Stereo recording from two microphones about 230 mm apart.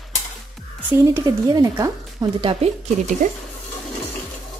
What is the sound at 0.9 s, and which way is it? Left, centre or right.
A woman's voice, centre.